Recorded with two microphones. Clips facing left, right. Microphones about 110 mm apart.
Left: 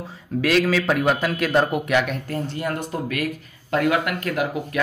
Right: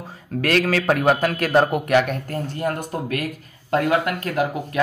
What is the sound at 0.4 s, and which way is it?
A man's voice, 55° right (ahead or behind).